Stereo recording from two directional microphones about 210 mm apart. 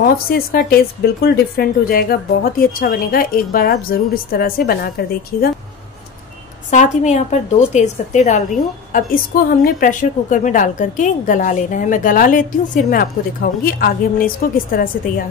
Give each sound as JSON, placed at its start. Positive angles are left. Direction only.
{"t": 0.0, "sound": "a woman's voice", "side_deg": 45}
{"t": 6.7, "sound": "a woman's voice", "side_deg": 35}